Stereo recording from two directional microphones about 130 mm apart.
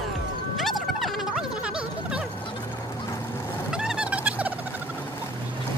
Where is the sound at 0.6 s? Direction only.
Centre (ahead or behind).